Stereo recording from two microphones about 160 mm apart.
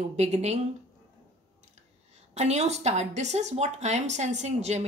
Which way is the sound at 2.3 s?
45° right (ahead or behind).